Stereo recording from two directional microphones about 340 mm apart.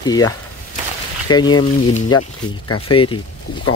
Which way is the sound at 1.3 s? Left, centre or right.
Centre.